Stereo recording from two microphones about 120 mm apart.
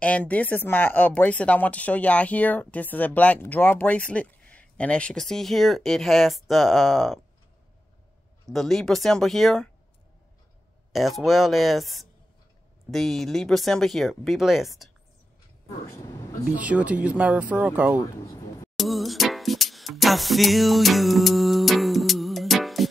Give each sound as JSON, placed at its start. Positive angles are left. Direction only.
{"t": 0.0, "sound": "speech", "side_deg": 10}
{"t": 8.5, "sound": "speech", "side_deg": 0}
{"t": 10.9, "sound": "speech", "side_deg": 0}
{"t": 15.9, "sound": "speech", "side_deg": 25}
{"t": 16.5, "sound": "speech", "side_deg": -10}
{"t": 18.2, "sound": "a sound", "side_deg": 25}
{"t": 18.8, "sound": "music", "side_deg": 0}